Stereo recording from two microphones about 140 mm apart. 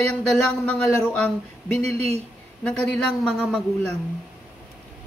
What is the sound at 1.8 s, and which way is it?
Speech, 50° right (ahead or behind).